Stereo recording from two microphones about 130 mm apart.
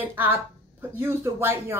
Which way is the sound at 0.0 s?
15° right (ahead or behind).